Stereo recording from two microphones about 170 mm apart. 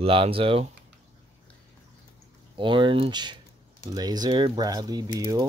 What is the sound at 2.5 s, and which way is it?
Speech, 30° right (ahead or behind).